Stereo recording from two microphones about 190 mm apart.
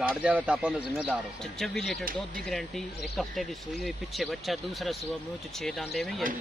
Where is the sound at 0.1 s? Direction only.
5° right (ahead or behind).